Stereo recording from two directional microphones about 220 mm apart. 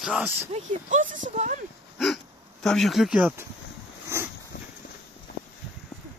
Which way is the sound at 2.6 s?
Centre (ahead or behind).